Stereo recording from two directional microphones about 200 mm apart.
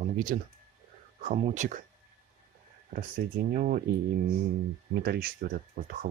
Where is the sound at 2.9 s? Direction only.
45° right (ahead or behind).